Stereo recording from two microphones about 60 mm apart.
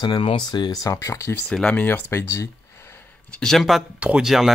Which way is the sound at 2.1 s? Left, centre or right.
Left.